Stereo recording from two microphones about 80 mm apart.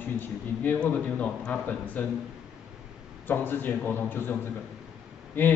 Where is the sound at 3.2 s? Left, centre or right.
Left.